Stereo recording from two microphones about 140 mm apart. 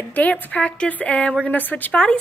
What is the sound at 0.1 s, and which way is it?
A woman's voice, 10° left (ahead or behind).